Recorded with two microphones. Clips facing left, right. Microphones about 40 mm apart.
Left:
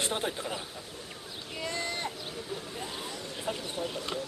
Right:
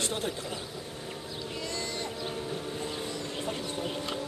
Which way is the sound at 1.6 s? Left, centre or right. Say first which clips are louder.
Left 3 dB; left.